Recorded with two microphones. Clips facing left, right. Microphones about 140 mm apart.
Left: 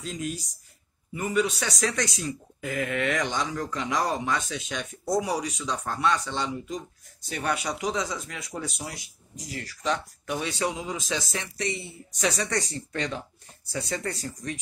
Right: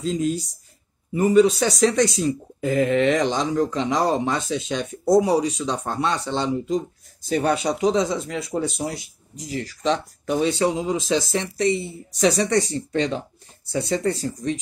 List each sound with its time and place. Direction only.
0.0 s speech: 25° right (ahead or behind)